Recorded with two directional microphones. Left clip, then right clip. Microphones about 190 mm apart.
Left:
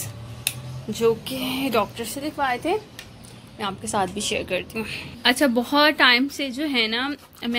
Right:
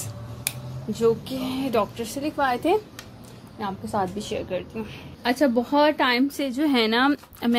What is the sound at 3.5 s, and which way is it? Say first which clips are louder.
A woman's voice: left 2 dB; 5° right (ahead or behind).